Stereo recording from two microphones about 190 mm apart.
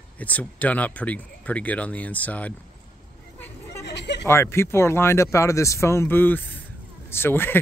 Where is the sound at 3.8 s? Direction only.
65° left (ahead or behind).